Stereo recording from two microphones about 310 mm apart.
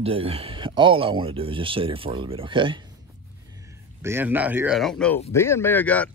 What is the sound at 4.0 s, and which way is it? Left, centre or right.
Speech, centre.